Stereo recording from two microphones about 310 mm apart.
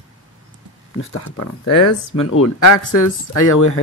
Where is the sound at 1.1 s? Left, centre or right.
Left.